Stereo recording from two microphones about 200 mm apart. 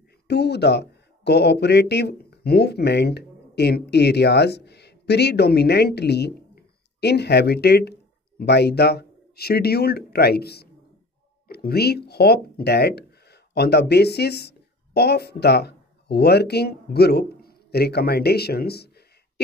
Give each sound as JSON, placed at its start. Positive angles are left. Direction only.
{"t": 0.3, "sound": "speech", "side_deg": 55}